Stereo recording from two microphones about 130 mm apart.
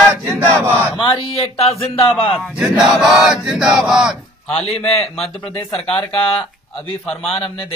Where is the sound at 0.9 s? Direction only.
40° left (ahead or behind).